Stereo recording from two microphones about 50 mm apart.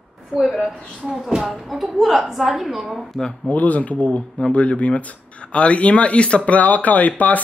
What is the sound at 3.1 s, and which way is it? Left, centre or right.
Speech, centre.